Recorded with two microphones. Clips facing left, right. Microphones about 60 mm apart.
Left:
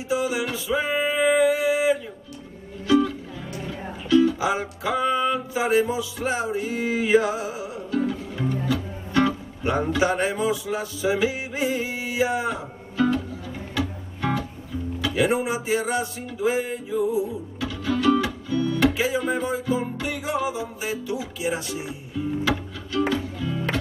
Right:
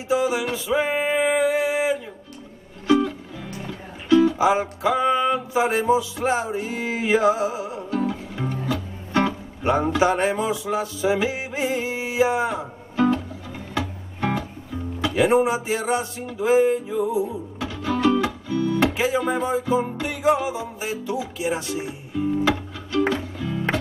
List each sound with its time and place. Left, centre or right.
0.1 s music: right
9.1 s speech: right
13.7 s music: right
15.0 s speech: right